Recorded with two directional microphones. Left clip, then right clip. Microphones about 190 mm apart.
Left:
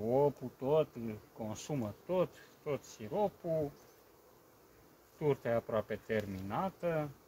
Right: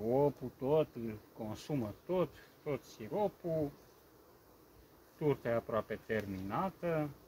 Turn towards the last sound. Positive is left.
turn(degrees=10)  # may be behind; listen again after turning